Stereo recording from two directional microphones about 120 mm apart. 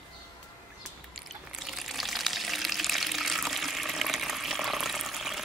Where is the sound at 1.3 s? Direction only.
Centre (ahead or behind).